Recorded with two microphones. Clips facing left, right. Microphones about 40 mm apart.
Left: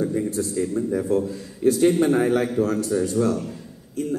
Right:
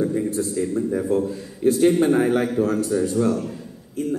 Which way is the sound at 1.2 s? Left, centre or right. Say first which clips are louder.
Even; right.